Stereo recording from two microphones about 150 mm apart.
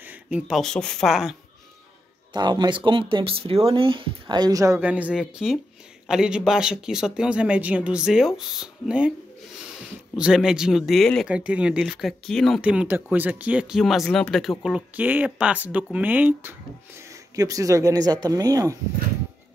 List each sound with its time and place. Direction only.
0.3 s speech: 5° right (ahead or behind)
2.3 s speech: 30° right (ahead or behind)
4.8 s speech: 10° right (ahead or behind)
10.1 s speech: 5° right (ahead or behind)
12.6 s speech: 10° right (ahead or behind)
17.4 s speech: 20° right (ahead or behind)